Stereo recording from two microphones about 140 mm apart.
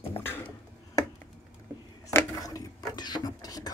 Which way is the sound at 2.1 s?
25° left (ahead or behind).